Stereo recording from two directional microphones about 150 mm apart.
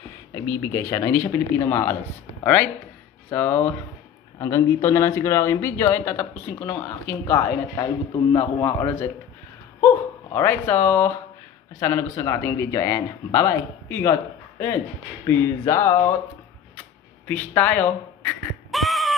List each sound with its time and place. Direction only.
0.3 s speech: 20° left (ahead or behind)
15.2 s speech: 15° left (ahead or behind)
17.3 s speech: 10° left (ahead or behind)
18.7 s a sound: centre (ahead or behind)